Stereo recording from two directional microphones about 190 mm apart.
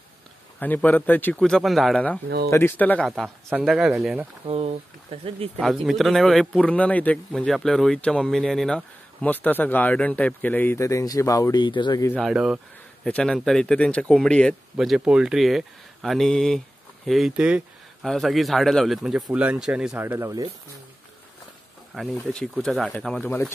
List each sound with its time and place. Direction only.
0.6 s speech: 10° left (ahead or behind)
2.2 s speech: 60° right (ahead or behind)
2.5 s speech: 10° left (ahead or behind)
3.4 s speech: 5° right (ahead or behind)
4.5 s speech: 30° right (ahead or behind)
5.9 s speech: centre (ahead or behind); by 12.2 s 20° left (ahead or behind)
12.2 s speech: 5° right (ahead or behind)
21.9 s speech: 5° left (ahead or behind)